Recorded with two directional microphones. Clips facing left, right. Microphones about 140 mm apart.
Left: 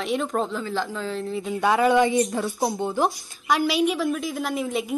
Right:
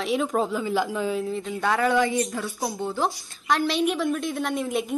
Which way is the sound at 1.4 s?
20° left (ahead or behind).